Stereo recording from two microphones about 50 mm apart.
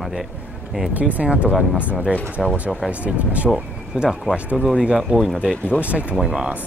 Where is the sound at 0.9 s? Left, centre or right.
Right.